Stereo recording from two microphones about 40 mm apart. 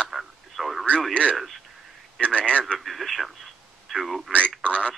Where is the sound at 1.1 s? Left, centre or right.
Left.